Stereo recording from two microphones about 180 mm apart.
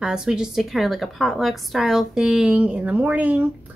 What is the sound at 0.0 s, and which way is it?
A woman's voice, 5° right (ahead or behind).